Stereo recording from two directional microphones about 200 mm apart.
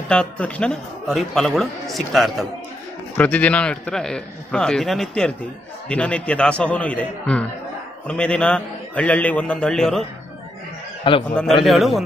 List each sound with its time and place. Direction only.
0.1 s a man's voice: 5° left (ahead or behind)
11.1 s a man's voice: 25° left (ahead or behind)
11.6 s a man's voice: centre (ahead or behind)